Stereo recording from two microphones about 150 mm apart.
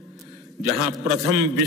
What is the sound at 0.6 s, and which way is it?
Speech, centre (ahead or behind).